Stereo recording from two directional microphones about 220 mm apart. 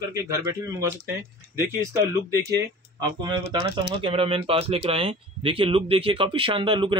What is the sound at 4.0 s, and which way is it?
A man's voice, 25° right (ahead or behind).